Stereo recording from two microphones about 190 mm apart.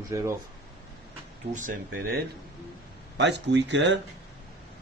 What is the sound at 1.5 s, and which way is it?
Speech, 45° right (ahead or behind).